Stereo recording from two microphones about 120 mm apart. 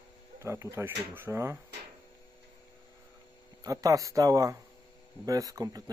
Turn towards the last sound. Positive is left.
turn(degrees=-30)  # may be behind; listen again after turning